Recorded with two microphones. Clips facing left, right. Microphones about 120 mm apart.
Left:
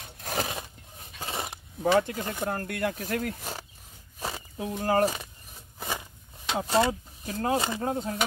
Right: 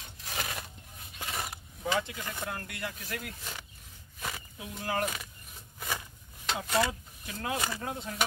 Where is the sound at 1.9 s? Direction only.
50° left (ahead or behind).